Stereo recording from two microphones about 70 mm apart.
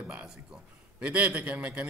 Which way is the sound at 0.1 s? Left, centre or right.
Centre.